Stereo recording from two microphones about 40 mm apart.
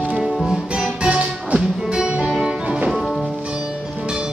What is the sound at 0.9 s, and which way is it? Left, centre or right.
Music, right.